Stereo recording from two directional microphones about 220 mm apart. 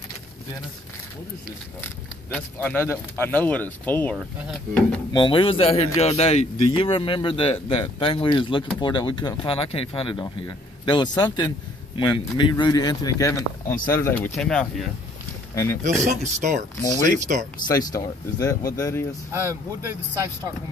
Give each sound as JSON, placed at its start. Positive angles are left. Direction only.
{"t": 2.3, "sound": "speech", "side_deg": 10}
{"t": 4.2, "sound": "speech", "side_deg": 0}
{"t": 5.1, "sound": "speech", "side_deg": 25}
{"t": 15.5, "sound": "speech", "side_deg": 15}
{"t": 16.1, "sound": "speech", "side_deg": -35}
{"t": 17.7, "sound": "speech", "side_deg": 15}
{"t": 19.3, "sound": "speech", "side_deg": -15}